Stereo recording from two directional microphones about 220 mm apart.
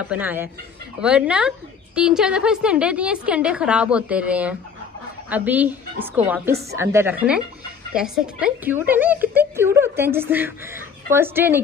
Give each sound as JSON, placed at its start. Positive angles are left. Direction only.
{"t": 0.1, "sound": "a woman's voice", "side_deg": -10}